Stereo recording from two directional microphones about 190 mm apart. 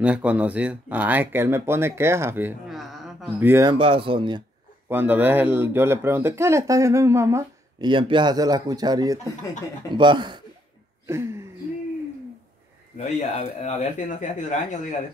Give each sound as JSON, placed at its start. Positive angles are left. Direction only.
{"t": 0.0, "sound": "speech", "side_deg": -5}
{"t": 3.3, "sound": "speech", "side_deg": -10}
{"t": 3.7, "sound": "speech", "side_deg": -30}
{"t": 4.8, "sound": "speech", "side_deg": -10}
{"t": 7.9, "sound": "speech", "side_deg": -25}
{"t": 11.1, "sound": "speech", "side_deg": -15}
{"t": 12.9, "sound": "speech", "side_deg": 35}